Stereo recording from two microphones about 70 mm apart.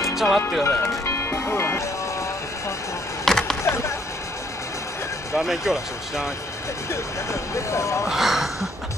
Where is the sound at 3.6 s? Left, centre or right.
Left.